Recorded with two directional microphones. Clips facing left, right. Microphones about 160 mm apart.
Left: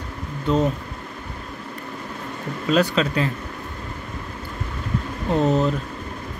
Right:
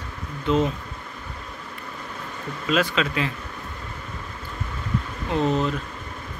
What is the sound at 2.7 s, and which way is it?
Speech, 35° left (ahead or behind).